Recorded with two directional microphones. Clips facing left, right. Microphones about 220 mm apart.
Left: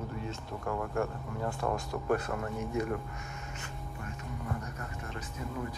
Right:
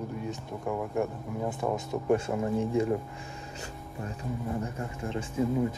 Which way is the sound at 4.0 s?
25° right (ahead or behind).